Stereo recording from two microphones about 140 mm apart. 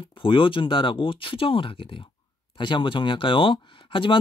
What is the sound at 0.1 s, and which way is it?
Speech, 40° left (ahead or behind).